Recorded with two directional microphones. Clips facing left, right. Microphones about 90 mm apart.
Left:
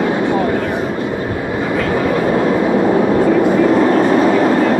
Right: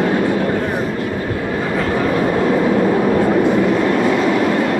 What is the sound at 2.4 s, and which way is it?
Vehicle, 30° left (ahead or behind).